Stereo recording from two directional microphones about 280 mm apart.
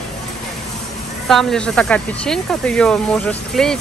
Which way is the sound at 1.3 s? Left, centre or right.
Centre.